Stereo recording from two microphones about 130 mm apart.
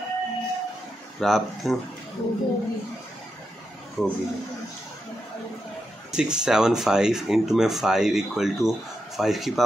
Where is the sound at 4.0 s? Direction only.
5° right (ahead or behind).